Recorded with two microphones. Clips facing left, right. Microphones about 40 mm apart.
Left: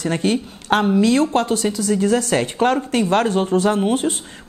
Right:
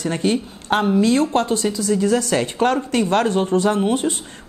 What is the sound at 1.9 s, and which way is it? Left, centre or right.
Speech, left.